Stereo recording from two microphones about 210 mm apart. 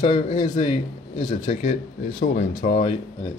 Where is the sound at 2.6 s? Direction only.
40° left (ahead or behind).